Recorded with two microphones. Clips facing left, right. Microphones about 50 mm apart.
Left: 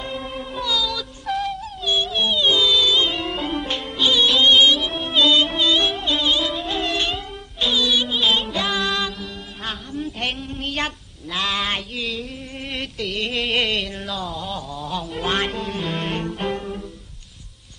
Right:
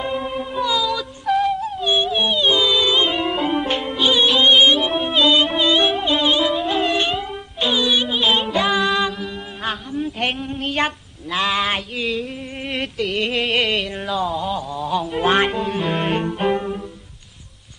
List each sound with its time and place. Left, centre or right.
0.0 s music: centre
11.3 s a sound: centre
12.7 s music: centre